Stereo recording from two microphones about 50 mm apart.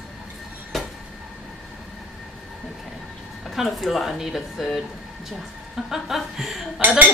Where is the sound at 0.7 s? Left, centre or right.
Centre.